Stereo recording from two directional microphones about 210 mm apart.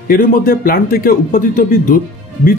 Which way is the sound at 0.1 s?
40° left (ahead or behind).